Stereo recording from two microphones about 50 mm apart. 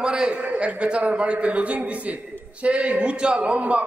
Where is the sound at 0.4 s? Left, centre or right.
Right.